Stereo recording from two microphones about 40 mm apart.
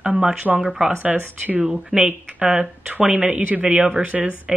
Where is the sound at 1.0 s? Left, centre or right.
Right.